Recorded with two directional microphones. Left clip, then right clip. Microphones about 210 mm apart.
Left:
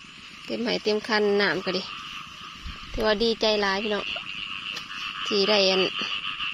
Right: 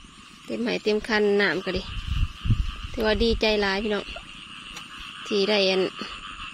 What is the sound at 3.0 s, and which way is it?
Speech, 20° right (ahead or behind).